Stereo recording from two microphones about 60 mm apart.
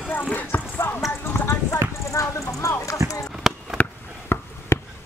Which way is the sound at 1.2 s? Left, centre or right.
Left.